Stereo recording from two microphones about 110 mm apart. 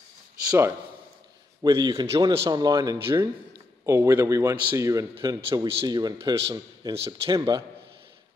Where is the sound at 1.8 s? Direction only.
45° right (ahead or behind).